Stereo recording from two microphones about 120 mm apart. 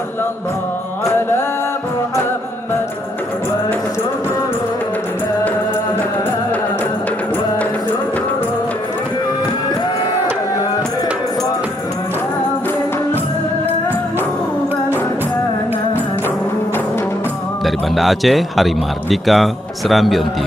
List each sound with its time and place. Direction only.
1.0 s music: 20° left (ahead or behind)
17.6 s speech: centre (ahead or behind)